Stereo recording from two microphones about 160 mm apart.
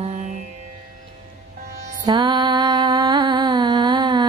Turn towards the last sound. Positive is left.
turn(degrees=-30)  # may be behind; listen again after turning